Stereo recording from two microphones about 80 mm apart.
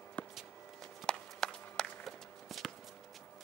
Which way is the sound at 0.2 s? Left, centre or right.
Centre.